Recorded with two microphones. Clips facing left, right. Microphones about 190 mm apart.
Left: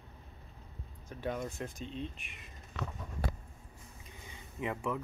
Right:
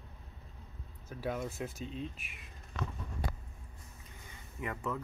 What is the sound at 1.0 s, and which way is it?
Speech, 5° right (ahead or behind).